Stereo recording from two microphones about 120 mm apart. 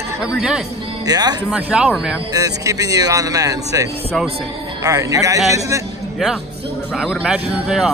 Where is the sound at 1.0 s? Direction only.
35° right (ahead or behind).